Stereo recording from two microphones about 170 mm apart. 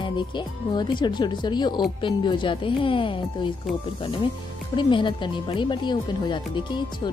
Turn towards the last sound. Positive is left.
turn(degrees=30)  # may be behind; listen again after turning